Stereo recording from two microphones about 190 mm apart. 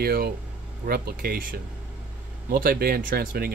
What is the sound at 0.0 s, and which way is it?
Speech, 50° right (ahead or behind).